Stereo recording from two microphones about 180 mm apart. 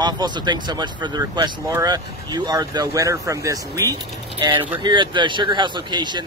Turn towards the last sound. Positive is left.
turn(degrees=-25)  # may be behind; listen again after turning